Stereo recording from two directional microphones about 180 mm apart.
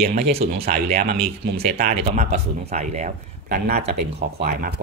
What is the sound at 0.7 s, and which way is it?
Speech, 40° right (ahead or behind).